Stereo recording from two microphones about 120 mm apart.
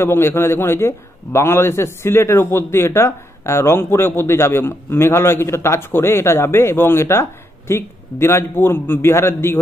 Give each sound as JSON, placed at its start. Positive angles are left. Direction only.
{"t": 0.0, "sound": "a man's voice", "side_deg": 20}